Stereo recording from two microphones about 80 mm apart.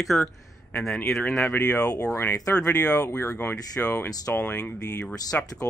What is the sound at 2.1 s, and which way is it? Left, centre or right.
Speech, left.